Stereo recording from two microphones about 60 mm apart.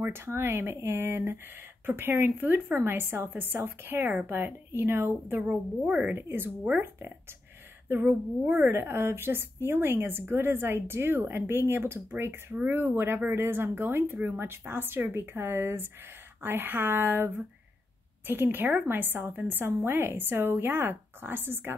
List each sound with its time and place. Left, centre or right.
0.1 s a woman's voice: right
5.5 s a woman's voice: right
6.1 s a woman's voice: right